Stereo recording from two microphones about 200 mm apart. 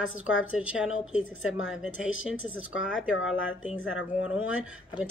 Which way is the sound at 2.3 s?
75° left (ahead or behind).